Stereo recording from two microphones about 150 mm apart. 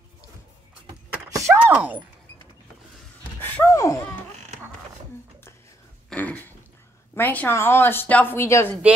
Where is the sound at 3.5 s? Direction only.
20° left (ahead or behind).